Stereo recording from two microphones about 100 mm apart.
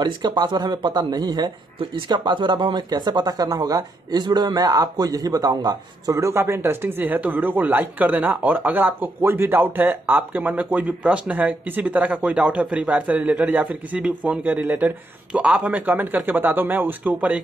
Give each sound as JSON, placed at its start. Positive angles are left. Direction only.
{"t": 0.0, "sound": "a man's voice", "side_deg": -45}
{"t": 6.1, "sound": "speech", "side_deg": -25}